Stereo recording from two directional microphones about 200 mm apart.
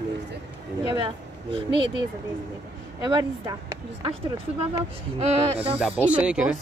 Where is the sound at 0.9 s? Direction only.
25° right (ahead or behind).